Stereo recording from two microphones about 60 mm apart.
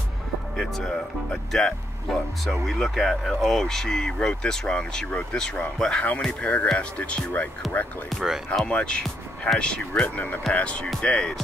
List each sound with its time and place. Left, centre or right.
0.6 s speech: centre; by 7.4 s left
7.6 s speech: centre
8.6 s speech: centre
10.0 s speech: left